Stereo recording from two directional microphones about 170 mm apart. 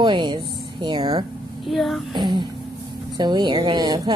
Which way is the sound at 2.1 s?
25° right (ahead or behind).